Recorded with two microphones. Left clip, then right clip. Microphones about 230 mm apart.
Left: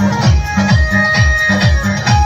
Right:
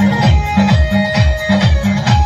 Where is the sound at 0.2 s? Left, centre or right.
Left.